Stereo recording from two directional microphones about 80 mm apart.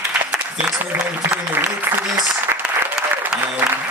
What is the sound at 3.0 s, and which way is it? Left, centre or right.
Applause, centre.